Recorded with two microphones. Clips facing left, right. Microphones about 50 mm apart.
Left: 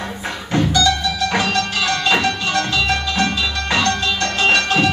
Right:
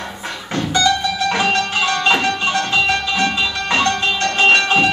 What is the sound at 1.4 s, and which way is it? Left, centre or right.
Music, right.